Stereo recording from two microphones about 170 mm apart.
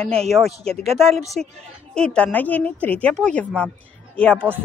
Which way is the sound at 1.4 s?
Centre (ahead or behind).